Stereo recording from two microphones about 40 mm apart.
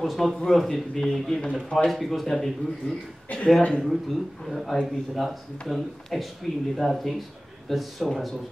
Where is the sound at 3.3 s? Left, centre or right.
Left.